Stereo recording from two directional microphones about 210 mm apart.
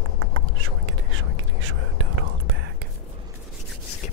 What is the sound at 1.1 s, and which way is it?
Whispering, 70° right (ahead or behind).